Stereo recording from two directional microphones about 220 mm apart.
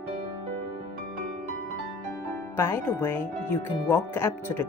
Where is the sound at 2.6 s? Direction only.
10° left (ahead or behind).